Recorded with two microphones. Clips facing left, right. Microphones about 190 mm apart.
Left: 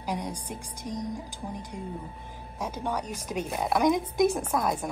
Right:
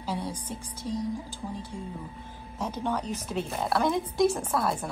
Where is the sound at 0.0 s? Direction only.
15° left (ahead or behind).